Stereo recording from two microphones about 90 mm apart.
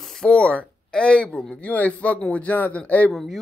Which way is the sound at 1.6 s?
15° left (ahead or behind).